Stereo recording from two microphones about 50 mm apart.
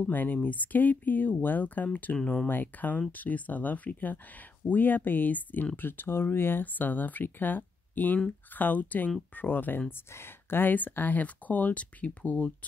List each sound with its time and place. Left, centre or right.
0.0 s speech: left
10.1 s speech: left